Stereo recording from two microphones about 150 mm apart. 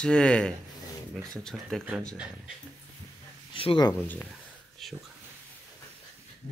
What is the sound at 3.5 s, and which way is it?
Speech, 30° left (ahead or behind).